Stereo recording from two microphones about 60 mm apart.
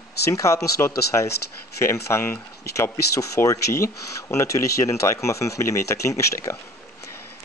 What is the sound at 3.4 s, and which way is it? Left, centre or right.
Speech, left.